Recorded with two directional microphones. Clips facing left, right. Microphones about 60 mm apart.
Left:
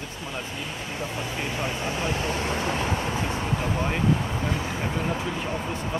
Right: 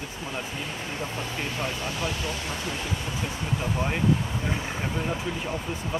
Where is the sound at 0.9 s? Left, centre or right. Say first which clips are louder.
Left 3 dB; centre; by 3.8 s left.